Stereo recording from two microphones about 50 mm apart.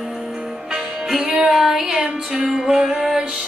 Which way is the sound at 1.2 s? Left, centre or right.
Centre.